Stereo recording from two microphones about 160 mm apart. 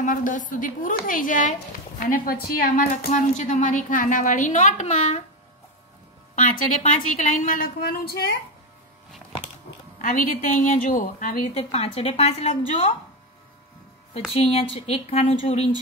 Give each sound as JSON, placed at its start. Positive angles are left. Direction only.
{"t": 0.0, "sound": "a woman's voice", "side_deg": 55}
{"t": 6.3, "sound": "a woman's voice", "side_deg": 50}
{"t": 10.0, "sound": "a woman's voice", "side_deg": 50}
{"t": 11.5, "sound": "a woman's voice", "side_deg": 40}
{"t": 14.3, "sound": "a woman's voice", "side_deg": 35}